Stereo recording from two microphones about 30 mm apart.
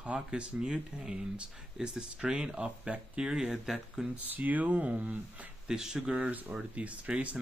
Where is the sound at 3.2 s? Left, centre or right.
Right.